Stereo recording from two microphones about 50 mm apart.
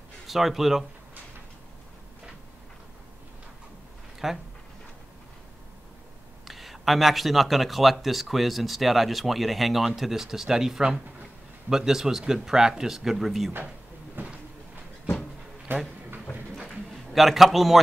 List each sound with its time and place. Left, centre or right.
0.3 s speech: centre
4.2 s speech: centre
6.4 s speech: centre
14.2 s a sound: right
15.7 s a sound: right
17.1 s speech: centre